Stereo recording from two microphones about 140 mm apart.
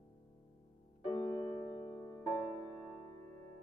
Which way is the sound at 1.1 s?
10° left (ahead or behind).